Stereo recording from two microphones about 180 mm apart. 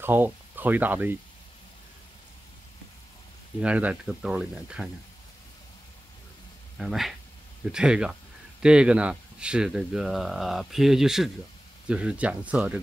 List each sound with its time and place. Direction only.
0.0 s speech: 10° right (ahead or behind)
3.6 s speech: 5° right (ahead or behind)
6.8 s speech: centre (ahead or behind)